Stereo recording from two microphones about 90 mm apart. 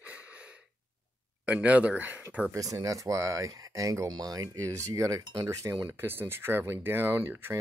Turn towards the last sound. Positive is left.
turn(degrees=-25)  # may be behind; listen again after turning